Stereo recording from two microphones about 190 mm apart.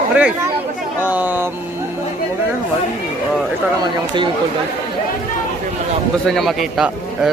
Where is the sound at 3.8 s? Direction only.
25° right (ahead or behind).